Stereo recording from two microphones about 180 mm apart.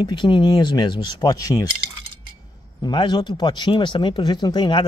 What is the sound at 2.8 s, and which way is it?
Speech, 25° left (ahead or behind).